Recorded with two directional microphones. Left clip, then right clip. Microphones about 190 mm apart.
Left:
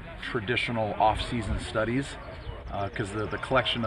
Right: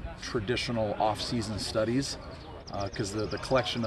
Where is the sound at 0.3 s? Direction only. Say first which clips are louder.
Left 3 dB; 25° right (ahead or behind).